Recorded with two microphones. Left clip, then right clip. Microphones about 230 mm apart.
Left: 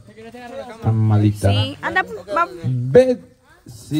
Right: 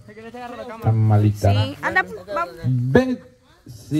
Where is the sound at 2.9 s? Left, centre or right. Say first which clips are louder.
Left 6 dB; left.